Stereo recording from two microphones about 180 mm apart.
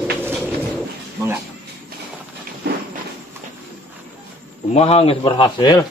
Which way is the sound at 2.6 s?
65° right (ahead or behind).